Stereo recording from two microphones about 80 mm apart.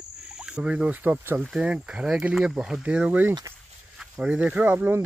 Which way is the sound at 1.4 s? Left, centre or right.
Centre.